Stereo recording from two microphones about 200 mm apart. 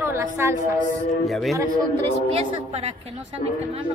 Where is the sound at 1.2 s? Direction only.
Centre (ahead or behind).